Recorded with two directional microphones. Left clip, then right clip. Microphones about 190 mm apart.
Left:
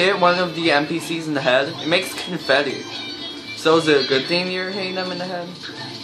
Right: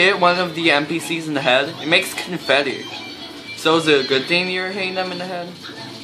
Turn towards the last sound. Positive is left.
turn(degrees=-15)  # may be behind; listen again after turning